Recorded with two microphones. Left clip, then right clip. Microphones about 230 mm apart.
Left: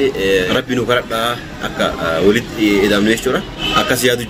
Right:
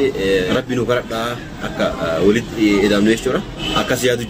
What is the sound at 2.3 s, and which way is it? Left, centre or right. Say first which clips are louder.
A man's voice: left 2 dB; centre.